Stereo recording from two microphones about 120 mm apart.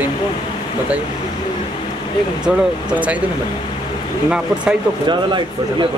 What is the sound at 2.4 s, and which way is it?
Speech, 10° right (ahead or behind).